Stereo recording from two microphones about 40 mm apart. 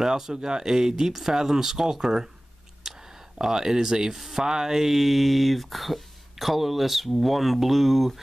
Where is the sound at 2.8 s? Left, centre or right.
Centre.